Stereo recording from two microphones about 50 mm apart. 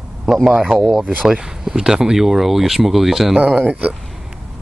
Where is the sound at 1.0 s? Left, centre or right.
Right.